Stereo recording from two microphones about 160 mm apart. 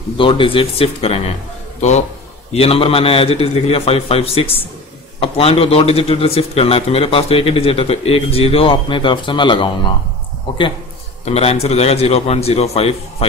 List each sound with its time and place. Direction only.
0.2 s a man's voice: 35° left (ahead or behind)
11.3 s a man's voice: 40° left (ahead or behind)